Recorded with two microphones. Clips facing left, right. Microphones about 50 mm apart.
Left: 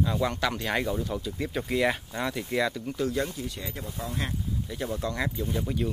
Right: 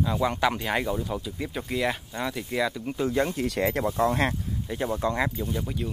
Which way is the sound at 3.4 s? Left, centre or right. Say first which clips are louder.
Right 11 dB; right.